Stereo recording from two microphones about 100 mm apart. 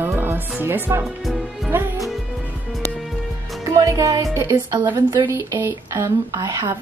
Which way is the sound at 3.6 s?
30° right (ahead or behind).